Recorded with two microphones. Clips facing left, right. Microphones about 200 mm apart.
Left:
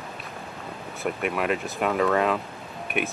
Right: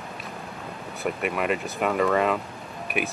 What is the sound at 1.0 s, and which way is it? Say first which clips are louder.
Speech: even; centre (ahead or behind).